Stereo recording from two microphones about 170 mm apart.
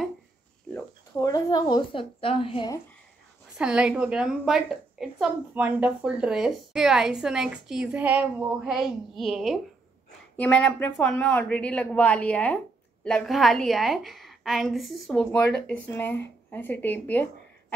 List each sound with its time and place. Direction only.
0.7 s a woman's voice: 15° left (ahead or behind); by 2.7 s 35° left (ahead or behind)
3.5 s a woman's voice: 5° right (ahead or behind); by 17.7 s 10° left (ahead or behind)